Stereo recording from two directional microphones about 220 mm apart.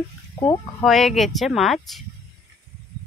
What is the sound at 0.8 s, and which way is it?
Speech, centre (ahead or behind).